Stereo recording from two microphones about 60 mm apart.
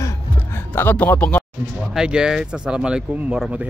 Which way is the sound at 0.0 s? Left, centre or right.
Left.